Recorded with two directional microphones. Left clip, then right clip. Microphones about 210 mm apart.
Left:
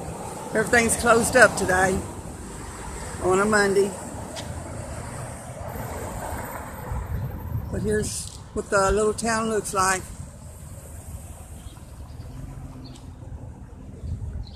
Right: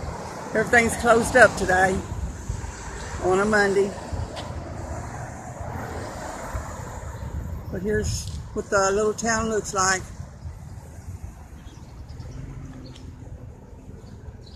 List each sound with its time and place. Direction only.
0.5 s speech: centre (ahead or behind)
3.3 s speech: centre (ahead or behind)
5.7 s vehicle: 45° left (ahead or behind)
7.8 s speech: centre (ahead or behind)